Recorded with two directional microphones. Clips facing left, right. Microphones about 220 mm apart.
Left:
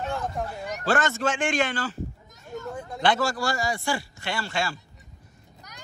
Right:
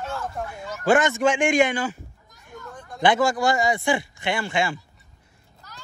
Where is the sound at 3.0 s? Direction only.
15° right (ahead or behind).